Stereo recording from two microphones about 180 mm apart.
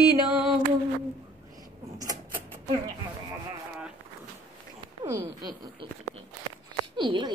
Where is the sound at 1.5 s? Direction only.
20° right (ahead or behind).